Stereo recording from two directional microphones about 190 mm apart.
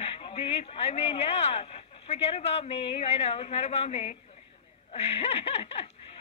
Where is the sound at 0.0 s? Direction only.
30° left (ahead or behind).